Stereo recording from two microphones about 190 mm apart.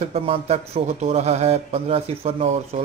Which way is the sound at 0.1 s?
30° right (ahead or behind).